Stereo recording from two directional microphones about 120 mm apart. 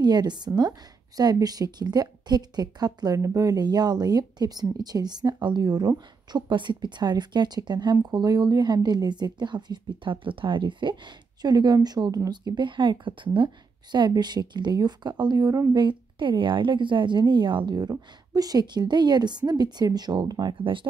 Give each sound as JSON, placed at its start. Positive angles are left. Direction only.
{"t": 0.0, "sound": "a woman's voice", "side_deg": -35}
{"t": 15.8, "sound": "a woman's voice", "side_deg": -45}